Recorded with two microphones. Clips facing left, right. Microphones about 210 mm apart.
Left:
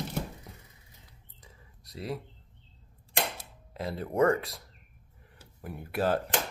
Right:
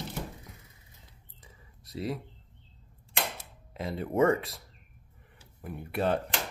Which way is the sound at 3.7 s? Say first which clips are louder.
Even; centre (ahead or behind).